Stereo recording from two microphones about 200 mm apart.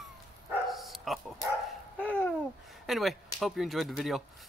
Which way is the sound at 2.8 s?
Centre (ahead or behind).